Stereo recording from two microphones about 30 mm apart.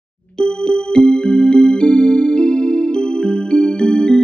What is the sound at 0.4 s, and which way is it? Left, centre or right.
Music, left.